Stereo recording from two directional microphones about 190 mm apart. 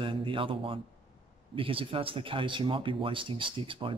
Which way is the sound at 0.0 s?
25° right (ahead or behind).